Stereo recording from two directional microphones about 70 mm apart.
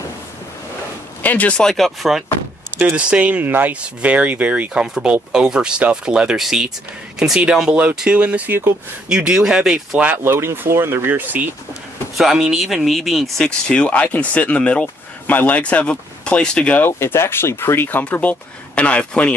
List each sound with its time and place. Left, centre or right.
1.2 s speech: left
1.6 s speech: centre
2.8 s speech: centre
8.0 s speech: centre
9.1 s speech: centre
10.1 s speech: right
12.2 s speech: centre
13.4 s speech: centre
17.0 s speech: left; by 19.3 s centre